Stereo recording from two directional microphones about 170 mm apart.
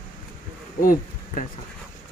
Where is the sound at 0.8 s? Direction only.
55° left (ahead or behind).